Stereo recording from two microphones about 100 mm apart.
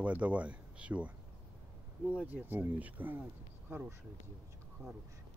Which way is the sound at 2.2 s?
15° right (ahead or behind).